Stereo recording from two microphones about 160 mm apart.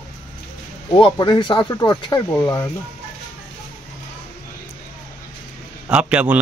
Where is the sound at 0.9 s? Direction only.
30° left (ahead or behind).